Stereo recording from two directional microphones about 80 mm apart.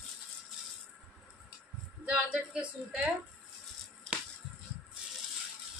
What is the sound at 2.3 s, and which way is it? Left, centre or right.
Speech, centre.